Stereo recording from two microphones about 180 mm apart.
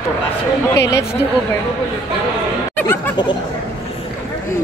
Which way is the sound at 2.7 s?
10° left (ahead or behind).